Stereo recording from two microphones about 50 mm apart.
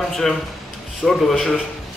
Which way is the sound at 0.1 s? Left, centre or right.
Centre.